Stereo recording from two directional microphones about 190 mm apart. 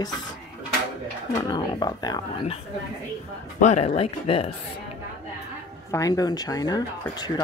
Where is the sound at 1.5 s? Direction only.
20° left (ahead or behind).